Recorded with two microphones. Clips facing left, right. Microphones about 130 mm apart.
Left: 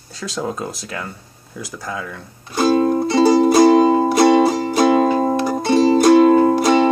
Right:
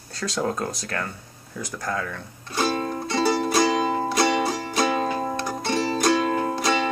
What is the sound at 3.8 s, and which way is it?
Music, 25° left (ahead or behind).